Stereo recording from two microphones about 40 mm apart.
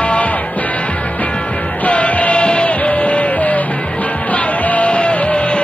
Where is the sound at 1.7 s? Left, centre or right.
Left.